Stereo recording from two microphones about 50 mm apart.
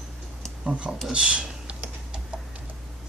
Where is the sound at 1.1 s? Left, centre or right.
Centre.